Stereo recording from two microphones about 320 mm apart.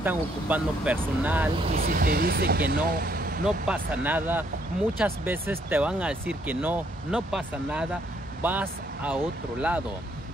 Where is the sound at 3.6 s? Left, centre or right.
Centre.